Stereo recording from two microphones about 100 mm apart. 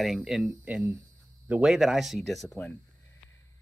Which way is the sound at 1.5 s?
5° right (ahead or behind).